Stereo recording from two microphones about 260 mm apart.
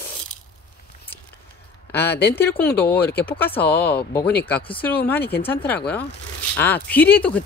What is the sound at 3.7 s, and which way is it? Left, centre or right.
Speech, left.